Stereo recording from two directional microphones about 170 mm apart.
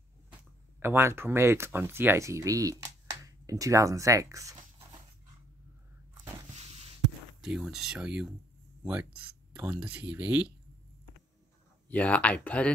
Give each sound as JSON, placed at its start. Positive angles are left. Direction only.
{"t": 0.7, "sound": "speech", "side_deg": -15}
{"t": 7.4, "sound": "speech", "side_deg": -5}
{"t": 11.9, "sound": "speech", "side_deg": 10}